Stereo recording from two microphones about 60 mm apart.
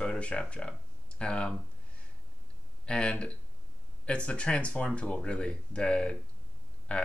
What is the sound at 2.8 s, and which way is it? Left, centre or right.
Speech, centre.